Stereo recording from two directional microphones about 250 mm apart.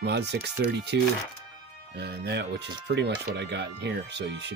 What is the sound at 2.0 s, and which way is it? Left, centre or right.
Speech, right.